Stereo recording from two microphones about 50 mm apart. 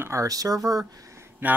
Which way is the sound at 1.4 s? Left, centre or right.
Right.